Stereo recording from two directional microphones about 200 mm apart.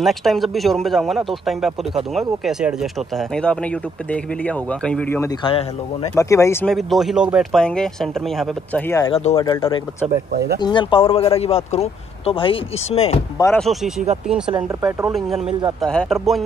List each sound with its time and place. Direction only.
0.0 s speech: centre (ahead or behind)
5.4 s speech: 25° left (ahead or behind)
6.1 s speech: 15° left (ahead or behind)
6.6 s speech: centre (ahead or behind)
9.0 s speech: 30° left (ahead or behind)
13.6 s speech: centre (ahead or behind)
14.5 s speech: 15° right (ahead or behind)
15.0 s speech: centre (ahead or behind)